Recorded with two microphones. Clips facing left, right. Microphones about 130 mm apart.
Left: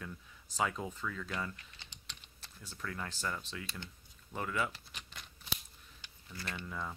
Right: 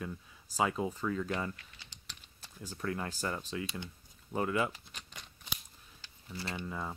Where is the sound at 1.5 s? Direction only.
25° left (ahead or behind).